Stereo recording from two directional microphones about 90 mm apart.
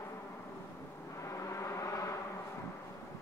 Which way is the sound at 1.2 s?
35° left (ahead or behind).